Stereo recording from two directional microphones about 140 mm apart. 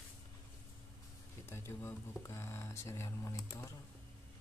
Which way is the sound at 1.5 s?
15° left (ahead or behind).